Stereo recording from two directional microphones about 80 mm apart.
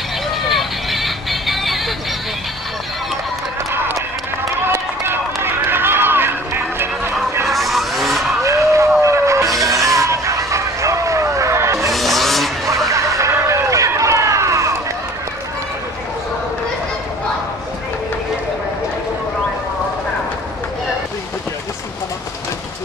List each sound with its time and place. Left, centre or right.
0.4 s music: centre
3.7 s run: right
7.4 s vehicle: centre
8.5 s a sound: right
11.9 s music: centre
12.9 s music: right
13.4 s a sound: right